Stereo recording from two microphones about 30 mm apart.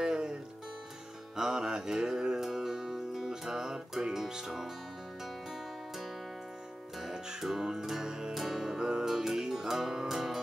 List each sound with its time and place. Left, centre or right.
0.0 s music: centre
7.4 s music: centre
8.4 s music: centre
8.7 s music: right
9.0 s music: centre